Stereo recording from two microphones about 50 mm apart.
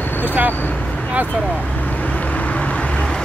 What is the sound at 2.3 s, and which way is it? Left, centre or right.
Vehicle, left.